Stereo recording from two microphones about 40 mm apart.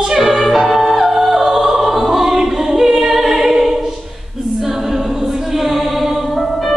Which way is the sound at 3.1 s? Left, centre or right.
Centre.